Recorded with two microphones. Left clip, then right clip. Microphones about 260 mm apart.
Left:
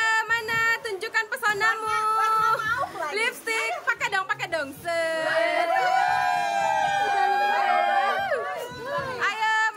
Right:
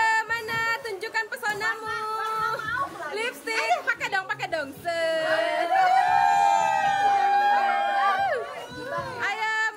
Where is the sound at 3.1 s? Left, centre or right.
Centre.